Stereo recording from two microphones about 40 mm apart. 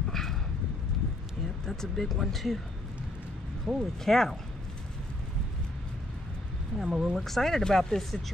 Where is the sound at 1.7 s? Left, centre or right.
Centre.